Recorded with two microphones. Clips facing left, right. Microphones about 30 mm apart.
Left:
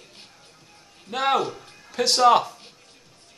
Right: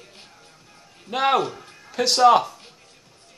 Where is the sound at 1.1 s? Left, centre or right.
Centre.